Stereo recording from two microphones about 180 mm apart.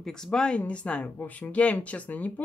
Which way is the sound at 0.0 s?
5° left (ahead or behind).